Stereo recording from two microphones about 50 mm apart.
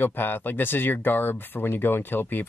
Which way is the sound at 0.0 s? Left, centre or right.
Left.